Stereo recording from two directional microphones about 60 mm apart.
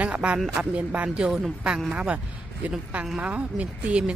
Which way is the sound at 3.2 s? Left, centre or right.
Right.